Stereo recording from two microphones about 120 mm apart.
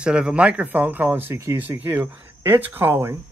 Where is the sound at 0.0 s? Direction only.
10° right (ahead or behind).